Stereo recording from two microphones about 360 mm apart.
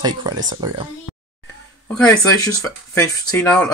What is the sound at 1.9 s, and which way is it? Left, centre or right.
Speech, centre.